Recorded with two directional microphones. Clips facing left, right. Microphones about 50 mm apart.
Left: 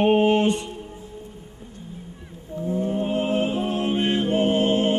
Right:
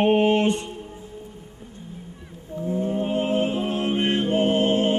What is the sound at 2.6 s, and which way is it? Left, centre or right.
Music, right.